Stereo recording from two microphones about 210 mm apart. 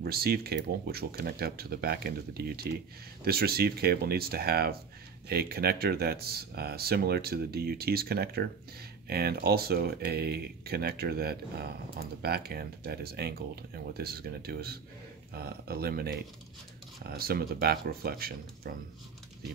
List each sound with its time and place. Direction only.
0.0 s speech: 45° right (ahead or behind)